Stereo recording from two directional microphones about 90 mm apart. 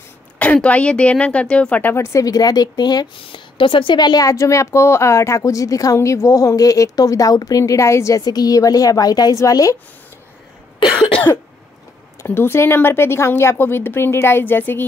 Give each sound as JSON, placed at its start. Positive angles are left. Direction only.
{"t": 0.4, "sound": "a woman's voice", "side_deg": 15}
{"t": 2.1, "sound": "speech", "side_deg": 45}
{"t": 3.3, "sound": "speech", "side_deg": 70}
{"t": 12.3, "sound": "a woman's voice", "side_deg": 25}